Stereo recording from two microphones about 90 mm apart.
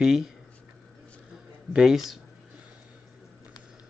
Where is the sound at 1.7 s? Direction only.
5° right (ahead or behind).